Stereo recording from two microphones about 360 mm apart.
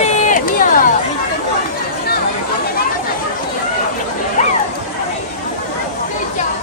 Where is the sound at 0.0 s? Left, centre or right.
Centre.